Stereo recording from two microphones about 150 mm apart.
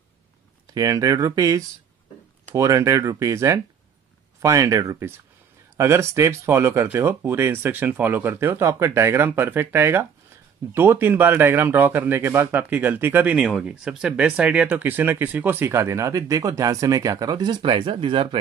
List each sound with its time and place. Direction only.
0.7 s speech: 25° right (ahead or behind)